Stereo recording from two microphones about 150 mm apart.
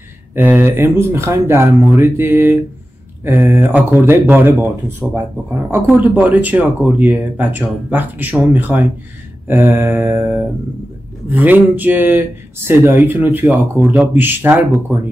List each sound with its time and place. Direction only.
0.3 s speech: 15° right (ahead or behind)